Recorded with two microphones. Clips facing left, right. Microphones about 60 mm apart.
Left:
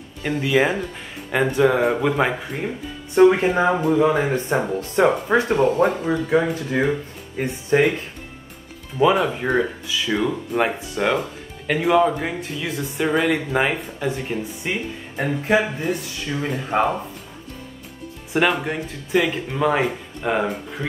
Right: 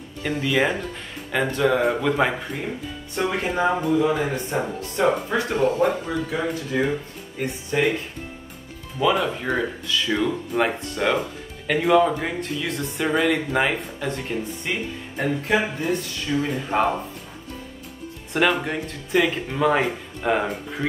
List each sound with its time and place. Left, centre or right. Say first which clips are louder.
0.4 s speech: left 3 dB; centre
3.2 s speech: left 9 dB; left
5.5 s speech: right 1 dB; left
9.1 s speech: left 3 dB; centre
18.3 s speech: left 1 dB; centre